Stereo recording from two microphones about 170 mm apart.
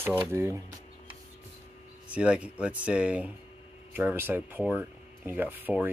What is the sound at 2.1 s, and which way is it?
Speech, 5° right (ahead or behind).